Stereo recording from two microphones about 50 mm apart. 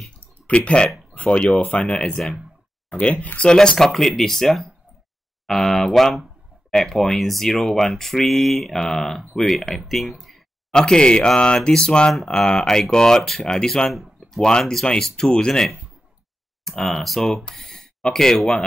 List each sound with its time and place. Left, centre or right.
0.5 s speech: left
3.6 s speech: centre
10.7 s speech: centre
13.9 s a sound: centre
14.4 s speech: centre